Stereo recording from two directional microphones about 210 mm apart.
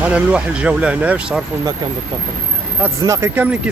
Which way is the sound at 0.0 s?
5° right (ahead or behind).